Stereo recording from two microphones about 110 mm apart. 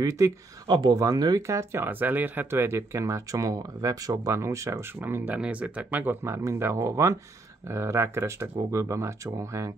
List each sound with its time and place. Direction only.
0.0 s speech: 30° right (ahead or behind)
0.7 s speech: 45° right (ahead or behind)
0.9 s speech: 35° right (ahead or behind)